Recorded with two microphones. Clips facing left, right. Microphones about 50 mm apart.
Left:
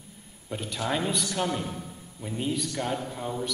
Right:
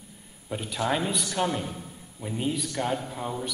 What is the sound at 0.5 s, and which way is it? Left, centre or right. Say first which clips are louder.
A man's voice: right 2 dB; centre.